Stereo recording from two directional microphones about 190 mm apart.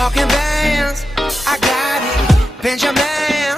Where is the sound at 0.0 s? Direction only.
Centre (ahead or behind).